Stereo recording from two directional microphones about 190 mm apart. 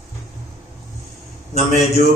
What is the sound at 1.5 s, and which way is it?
Speech, 40° left (ahead or behind).